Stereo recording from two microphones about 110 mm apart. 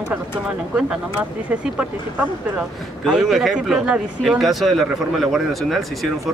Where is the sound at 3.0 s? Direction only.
5° right (ahead or behind).